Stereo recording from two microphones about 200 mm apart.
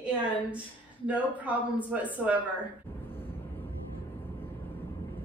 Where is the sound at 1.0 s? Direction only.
5° right (ahead or behind).